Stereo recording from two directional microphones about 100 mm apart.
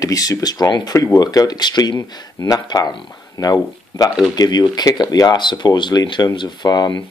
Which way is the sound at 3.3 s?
40° left (ahead or behind).